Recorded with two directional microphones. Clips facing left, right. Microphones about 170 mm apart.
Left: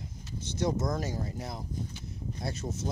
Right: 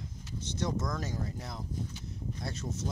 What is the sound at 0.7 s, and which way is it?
Speech, 30° left (ahead or behind).